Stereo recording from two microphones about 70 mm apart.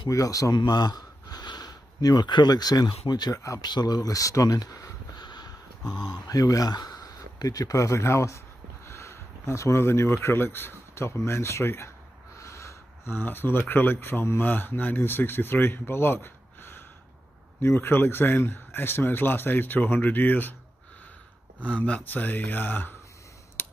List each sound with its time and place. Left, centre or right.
0.1 s speech: left
0.6 s speech: left
5.1 s speech: left
12.4 s a sound: left
14.0 s speech: left
21.6 s speech: centre
23.6 s a sound: left